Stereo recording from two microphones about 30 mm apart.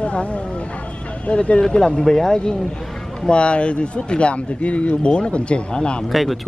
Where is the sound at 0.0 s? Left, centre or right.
Left.